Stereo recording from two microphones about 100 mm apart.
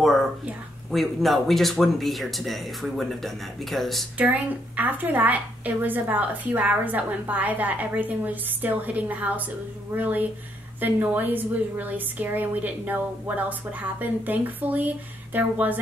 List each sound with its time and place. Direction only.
0.9 s speech: centre (ahead or behind)
4.2 s a woman's voice: 15° right (ahead or behind)